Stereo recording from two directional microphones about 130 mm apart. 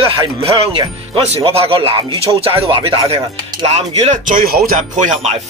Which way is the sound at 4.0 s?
75° right (ahead or behind).